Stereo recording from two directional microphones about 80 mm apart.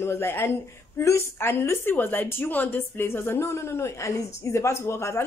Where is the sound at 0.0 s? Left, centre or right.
Left.